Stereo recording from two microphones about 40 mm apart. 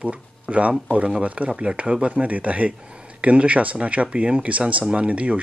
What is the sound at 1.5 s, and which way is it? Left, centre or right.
Speech, right.